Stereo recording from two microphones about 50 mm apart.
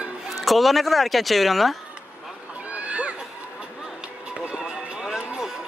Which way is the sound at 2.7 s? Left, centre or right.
Right.